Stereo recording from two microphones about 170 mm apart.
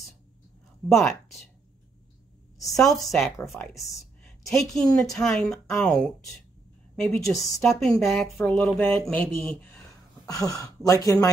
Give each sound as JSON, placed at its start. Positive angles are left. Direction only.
{"t": 0.8, "sound": "a woman's voice", "side_deg": 0}
{"t": 2.7, "sound": "a woman's voice", "side_deg": 0}
{"t": 3.3, "sound": "a woman's voice", "side_deg": 15}
{"t": 10.2, "sound": "speech", "side_deg": 20}